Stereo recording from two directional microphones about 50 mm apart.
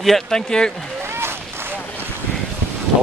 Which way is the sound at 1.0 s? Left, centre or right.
Right.